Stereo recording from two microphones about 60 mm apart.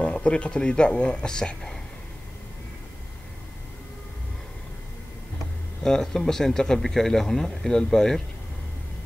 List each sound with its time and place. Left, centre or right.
0.0 s speech: centre
5.9 s speech: centre